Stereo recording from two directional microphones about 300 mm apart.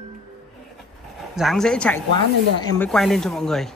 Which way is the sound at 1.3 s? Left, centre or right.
Centre.